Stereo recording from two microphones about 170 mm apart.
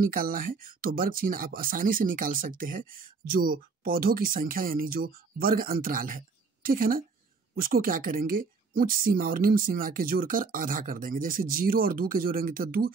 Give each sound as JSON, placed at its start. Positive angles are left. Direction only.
{"t": 0.0, "sound": "speech", "side_deg": -55}